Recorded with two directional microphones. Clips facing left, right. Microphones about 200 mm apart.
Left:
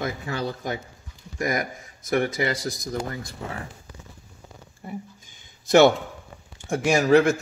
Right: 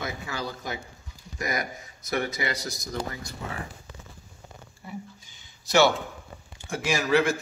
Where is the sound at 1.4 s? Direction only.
45° left (ahead or behind).